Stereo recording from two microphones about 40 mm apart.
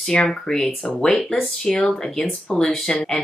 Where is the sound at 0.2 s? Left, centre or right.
Centre.